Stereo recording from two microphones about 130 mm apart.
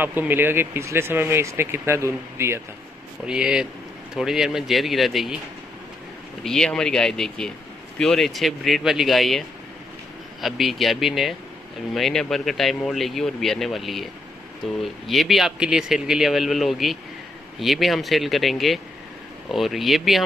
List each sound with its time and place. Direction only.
0.0 s speech: 15° right (ahead or behind)
3.3 s speech: 5° right (ahead or behind)
6.4 s speech: 5° left (ahead or behind)
10.4 s speech: centre (ahead or behind)